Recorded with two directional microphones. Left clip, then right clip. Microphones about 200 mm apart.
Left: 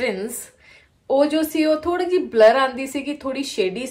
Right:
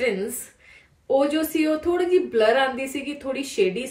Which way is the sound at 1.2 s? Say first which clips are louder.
Left 3 dB; 25° left (ahead or behind).